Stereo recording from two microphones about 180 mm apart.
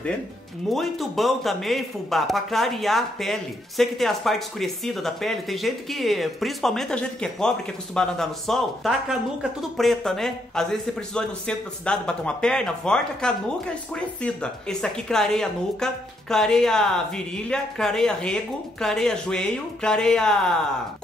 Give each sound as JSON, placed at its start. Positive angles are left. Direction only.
{"t": 0.7, "sound": "speech", "side_deg": 0}